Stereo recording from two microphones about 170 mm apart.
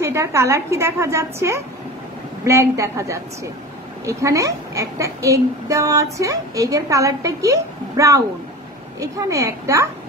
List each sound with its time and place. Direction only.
0.0 s a woman's voice: 15° right (ahead or behind)